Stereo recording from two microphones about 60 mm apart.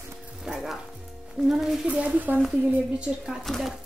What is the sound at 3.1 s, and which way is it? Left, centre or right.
Speech, centre.